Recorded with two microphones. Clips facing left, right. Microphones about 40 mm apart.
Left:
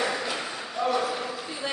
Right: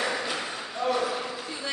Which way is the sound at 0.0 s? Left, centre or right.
Centre.